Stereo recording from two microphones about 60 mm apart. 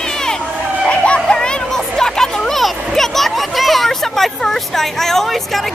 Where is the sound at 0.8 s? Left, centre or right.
Centre.